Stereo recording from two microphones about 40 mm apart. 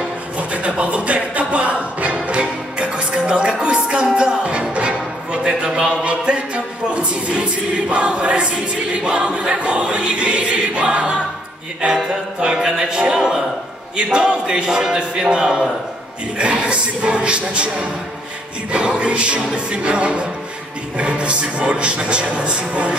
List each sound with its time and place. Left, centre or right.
0.4 s music: right
7.9 s choir: right
16.3 s speech: right
18.7 s choir: right